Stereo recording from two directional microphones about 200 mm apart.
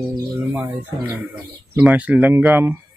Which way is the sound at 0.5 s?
10° right (ahead or behind).